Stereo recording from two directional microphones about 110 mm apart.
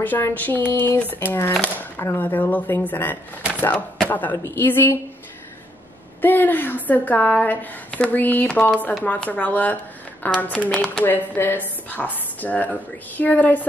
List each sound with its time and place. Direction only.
0.0 s a woman's voice: 15° left (ahead or behind)
6.2 s speech: 20° left (ahead or behind)
10.7 s speech: 5° left (ahead or behind)
11.1 s speech: 15° left (ahead or behind)